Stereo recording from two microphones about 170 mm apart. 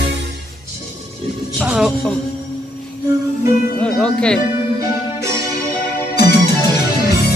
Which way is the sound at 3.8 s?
5° left (ahead or behind).